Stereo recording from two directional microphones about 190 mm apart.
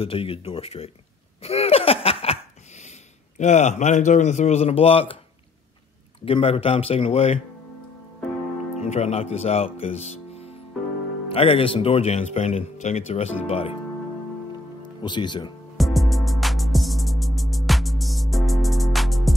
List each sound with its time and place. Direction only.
0.0 s speech: 30° left (ahead or behind)
1.4 s laughter: 30° left (ahead or behind)
3.3 s speech: 40° left (ahead or behind)
6.2 s speech: 30° left (ahead or behind)
8.7 s speech: 35° left (ahead or behind)
14.8 s speech: 25° left (ahead or behind)
15.8 s music: centre (ahead or behind)